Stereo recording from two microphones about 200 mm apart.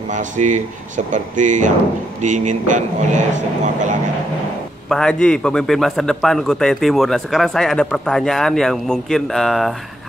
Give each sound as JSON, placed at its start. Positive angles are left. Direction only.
{"t": 0.1, "sound": "speech", "side_deg": -40}
{"t": 4.8, "sound": "a man's voice", "side_deg": 5}